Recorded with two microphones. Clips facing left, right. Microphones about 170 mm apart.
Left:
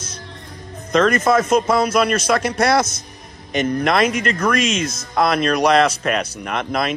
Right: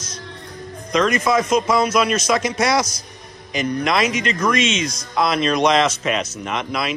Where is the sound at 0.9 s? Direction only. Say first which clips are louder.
Left 2 dB; 50° left (ahead or behind).